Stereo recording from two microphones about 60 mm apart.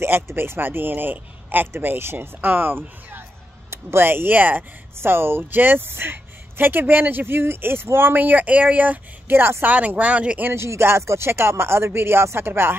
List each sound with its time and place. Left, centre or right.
0.0 s speech: right
10.5 s speech: right